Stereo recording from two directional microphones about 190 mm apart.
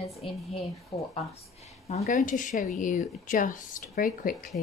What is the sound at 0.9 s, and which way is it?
Speech, 25° left (ahead or behind).